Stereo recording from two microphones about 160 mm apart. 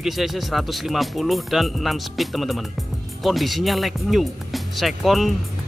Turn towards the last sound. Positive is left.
turn(degrees=0)  # may be behind; listen again after turning